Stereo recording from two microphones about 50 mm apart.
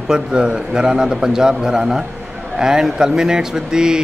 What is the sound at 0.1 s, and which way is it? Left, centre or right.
Speech, centre.